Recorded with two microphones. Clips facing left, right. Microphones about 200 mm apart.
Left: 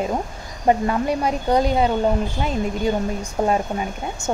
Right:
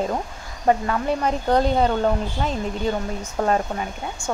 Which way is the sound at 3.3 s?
10° left (ahead or behind).